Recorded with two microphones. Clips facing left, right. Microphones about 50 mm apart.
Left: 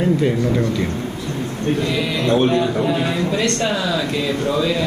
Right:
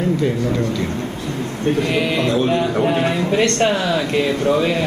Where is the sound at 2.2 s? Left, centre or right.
Left.